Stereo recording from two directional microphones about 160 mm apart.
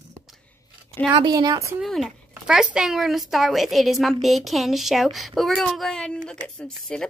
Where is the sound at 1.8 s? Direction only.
Centre (ahead or behind).